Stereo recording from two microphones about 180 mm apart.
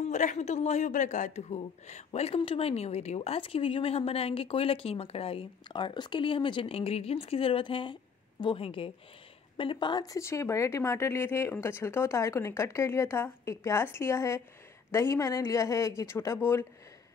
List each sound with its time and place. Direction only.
0.0 s a man's voice: 40° left (ahead or behind); by 16.6 s 15° left (ahead or behind)